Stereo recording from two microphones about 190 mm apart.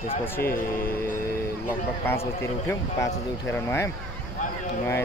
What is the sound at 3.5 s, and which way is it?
Speech, 15° left (ahead or behind).